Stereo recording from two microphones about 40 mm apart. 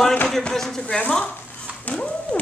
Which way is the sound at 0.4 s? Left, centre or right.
Centre.